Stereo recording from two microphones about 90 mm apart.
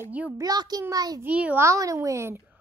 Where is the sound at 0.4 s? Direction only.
45° right (ahead or behind).